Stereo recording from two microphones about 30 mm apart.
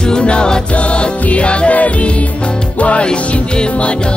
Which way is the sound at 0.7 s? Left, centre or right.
Left.